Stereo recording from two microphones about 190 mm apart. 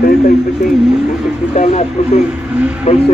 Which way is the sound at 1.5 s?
35° left (ahead or behind).